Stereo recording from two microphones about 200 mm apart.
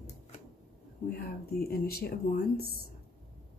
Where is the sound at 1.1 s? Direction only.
50° left (ahead or behind).